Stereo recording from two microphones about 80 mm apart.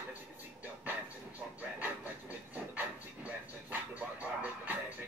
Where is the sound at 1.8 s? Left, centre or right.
Right.